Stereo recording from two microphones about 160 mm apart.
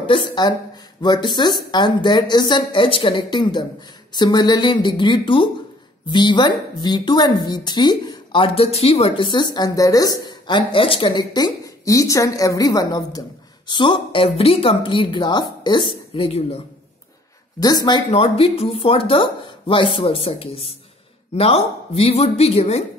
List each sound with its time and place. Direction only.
0.0 s a woman's voice: 30° left (ahead or behind)
17.6 s a woman's voice: 25° left (ahead or behind); by 22.8 s 40° left (ahead or behind)